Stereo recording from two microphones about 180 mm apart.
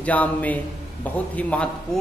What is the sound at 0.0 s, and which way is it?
A man's voice, 10° left (ahead or behind).